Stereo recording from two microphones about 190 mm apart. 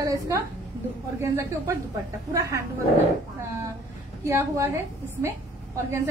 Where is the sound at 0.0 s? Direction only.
15° right (ahead or behind).